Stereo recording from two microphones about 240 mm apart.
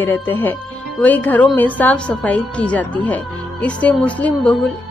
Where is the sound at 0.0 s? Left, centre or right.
Centre.